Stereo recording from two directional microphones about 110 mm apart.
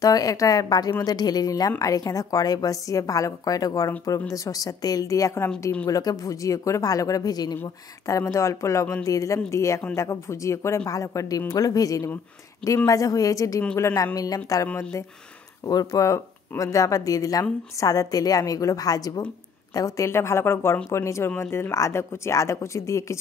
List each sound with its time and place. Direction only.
0.0 s speech: 35° left (ahead or behind)
14.7 s speech: 15° left (ahead or behind)
15.6 s speech: 35° left (ahead or behind)